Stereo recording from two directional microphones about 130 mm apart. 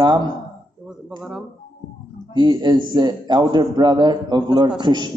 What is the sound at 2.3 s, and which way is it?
Speech, 35° right (ahead or behind).